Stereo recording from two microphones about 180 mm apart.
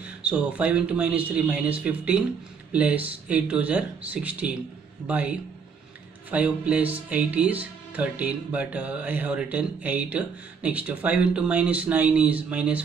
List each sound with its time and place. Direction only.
0.0 s speech: 5° right (ahead or behind)